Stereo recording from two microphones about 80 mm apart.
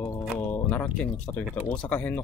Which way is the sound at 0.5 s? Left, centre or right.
Left.